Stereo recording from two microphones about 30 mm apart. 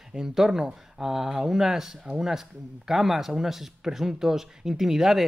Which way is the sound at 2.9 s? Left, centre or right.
Centre.